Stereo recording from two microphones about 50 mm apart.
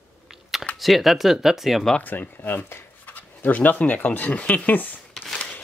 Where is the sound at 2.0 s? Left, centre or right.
Left.